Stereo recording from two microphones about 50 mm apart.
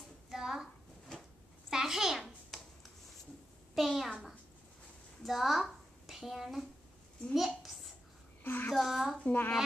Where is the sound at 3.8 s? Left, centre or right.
Centre.